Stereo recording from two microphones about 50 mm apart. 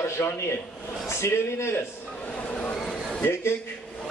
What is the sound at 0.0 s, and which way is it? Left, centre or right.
A man's voice, left.